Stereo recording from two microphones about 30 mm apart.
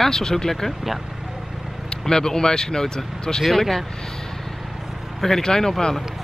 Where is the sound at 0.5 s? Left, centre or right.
Centre.